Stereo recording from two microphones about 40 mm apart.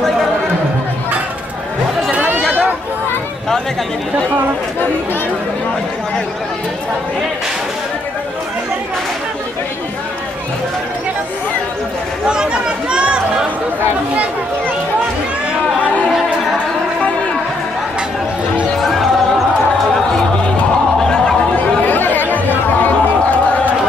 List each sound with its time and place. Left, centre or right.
12.3 s speech: right
18.8 s basketball bounce: centre
21.0 s a sound: centre
21.8 s chatter: left